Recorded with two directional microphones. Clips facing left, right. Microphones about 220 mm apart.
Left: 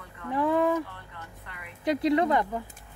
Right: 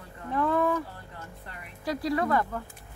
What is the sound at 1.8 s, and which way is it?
Speech, 20° left (ahead or behind).